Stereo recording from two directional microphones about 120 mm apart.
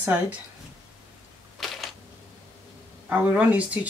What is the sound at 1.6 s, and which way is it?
Camera, centre (ahead or behind).